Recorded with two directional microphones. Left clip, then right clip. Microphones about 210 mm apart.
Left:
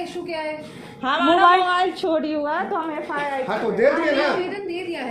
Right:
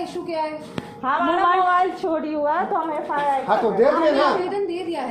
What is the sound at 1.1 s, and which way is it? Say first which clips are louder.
A woman's voice: left 3 dB; 45° left (ahead or behind).